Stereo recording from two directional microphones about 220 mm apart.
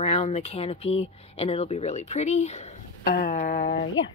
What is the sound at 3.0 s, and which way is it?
Speech, 40° left (ahead or behind).